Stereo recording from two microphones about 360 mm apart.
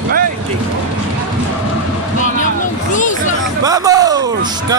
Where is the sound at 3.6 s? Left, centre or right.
Centre.